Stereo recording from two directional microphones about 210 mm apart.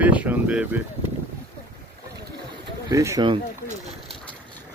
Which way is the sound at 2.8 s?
15° right (ahead or behind).